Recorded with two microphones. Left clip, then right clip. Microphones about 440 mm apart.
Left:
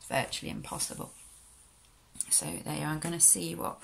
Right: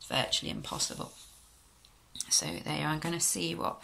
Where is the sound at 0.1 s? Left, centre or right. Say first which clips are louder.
Right 2 dB; centre.